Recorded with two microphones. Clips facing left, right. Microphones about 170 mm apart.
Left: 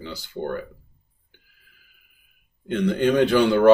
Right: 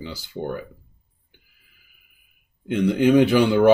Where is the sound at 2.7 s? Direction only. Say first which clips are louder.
Right 3 dB; 10° right (ahead or behind).